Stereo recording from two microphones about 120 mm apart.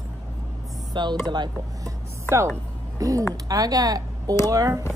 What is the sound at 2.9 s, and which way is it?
A woman's voice, 30° right (ahead or behind).